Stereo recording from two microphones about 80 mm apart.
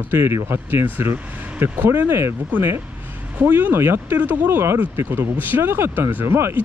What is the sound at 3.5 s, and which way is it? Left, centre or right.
Speech, right.